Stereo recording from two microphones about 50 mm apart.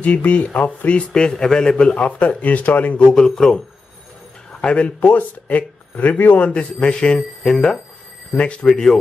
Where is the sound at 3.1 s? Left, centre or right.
Centre.